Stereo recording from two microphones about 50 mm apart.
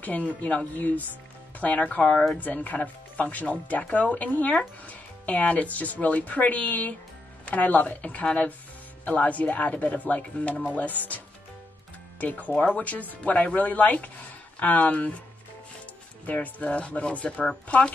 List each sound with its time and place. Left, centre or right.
0.0 s speech: left
12.2 s speech: left
16.3 s speech: left